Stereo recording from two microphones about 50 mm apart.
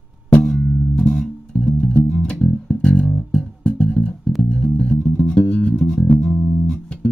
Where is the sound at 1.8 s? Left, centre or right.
Centre.